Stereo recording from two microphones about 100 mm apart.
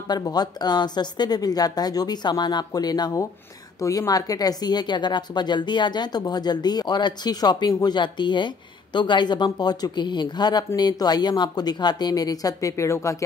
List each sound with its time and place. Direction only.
0.1 s speech: 40° left (ahead or behind)